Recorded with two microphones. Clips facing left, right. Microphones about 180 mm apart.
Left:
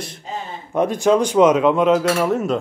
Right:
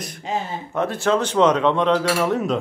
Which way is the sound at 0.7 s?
15° left (ahead or behind).